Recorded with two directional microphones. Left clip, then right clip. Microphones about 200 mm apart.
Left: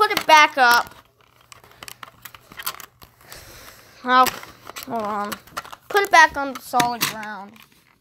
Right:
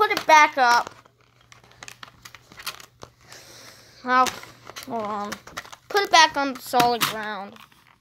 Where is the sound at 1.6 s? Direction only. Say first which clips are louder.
Left 3 dB; 35° left (ahead or behind).